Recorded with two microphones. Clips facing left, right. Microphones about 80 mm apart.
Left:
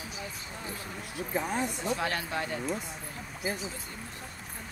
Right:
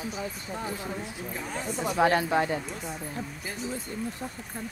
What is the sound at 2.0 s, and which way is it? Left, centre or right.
Speech, right.